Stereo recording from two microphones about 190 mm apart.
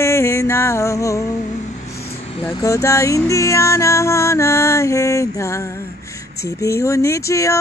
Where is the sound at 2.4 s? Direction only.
15° left (ahead or behind).